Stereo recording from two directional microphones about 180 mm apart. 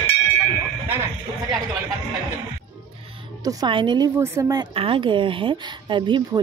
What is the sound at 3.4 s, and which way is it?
A woman's voice, 25° right (ahead or behind).